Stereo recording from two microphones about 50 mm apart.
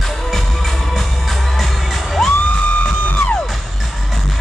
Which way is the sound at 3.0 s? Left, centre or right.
Left.